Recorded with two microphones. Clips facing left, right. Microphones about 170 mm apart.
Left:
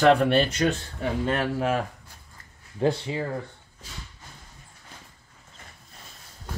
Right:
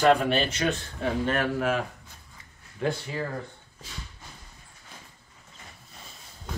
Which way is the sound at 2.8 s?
30° left (ahead or behind).